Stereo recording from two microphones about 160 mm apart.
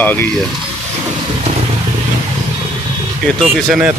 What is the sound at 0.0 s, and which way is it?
Speech, 10° left (ahead or behind).